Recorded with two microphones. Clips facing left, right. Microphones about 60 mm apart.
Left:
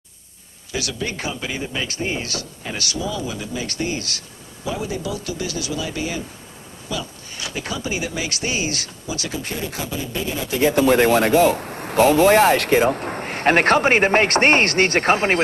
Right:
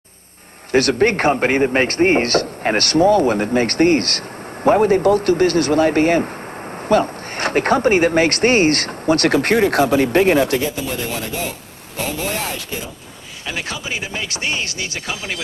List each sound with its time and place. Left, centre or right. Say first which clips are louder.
0.7 s speech: right 12 dB; right
10.6 s speech: left 8 dB; left
13.4 s speech: left 12 dB; left